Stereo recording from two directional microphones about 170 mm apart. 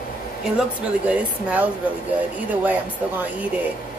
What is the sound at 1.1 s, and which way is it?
Speech, 10° right (ahead or behind).